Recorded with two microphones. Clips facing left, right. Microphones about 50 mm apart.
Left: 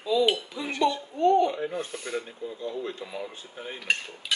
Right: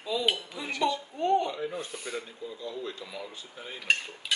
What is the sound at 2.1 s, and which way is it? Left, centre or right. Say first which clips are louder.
Speech: left 4 dB; left.